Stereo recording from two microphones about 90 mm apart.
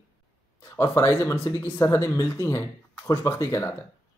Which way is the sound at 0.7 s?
30° left (ahead or behind).